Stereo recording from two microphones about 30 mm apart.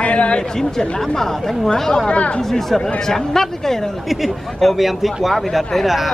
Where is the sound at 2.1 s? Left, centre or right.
Left.